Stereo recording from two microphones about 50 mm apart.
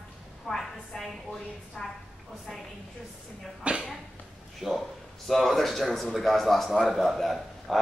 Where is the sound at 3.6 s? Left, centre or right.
Right.